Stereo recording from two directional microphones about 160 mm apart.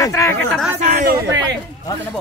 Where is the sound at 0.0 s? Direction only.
20° left (ahead or behind).